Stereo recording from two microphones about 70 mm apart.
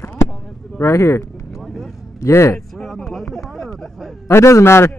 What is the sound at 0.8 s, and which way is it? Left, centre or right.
Speech, left.